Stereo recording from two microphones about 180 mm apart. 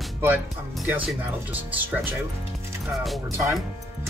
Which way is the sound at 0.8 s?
10° right (ahead or behind).